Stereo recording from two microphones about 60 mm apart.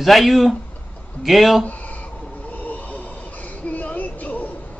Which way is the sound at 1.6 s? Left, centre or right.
Left.